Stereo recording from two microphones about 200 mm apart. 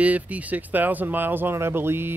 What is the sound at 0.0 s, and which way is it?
Speech, 5° right (ahead or behind).